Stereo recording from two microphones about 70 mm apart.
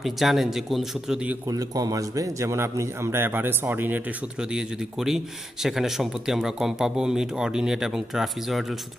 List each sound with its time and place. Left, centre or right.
0.0 s speech: centre
1.5 s a man's voice: right
4.4 s speech: centre